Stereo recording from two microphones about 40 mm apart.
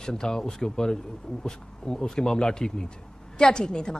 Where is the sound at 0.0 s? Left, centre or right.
Centre.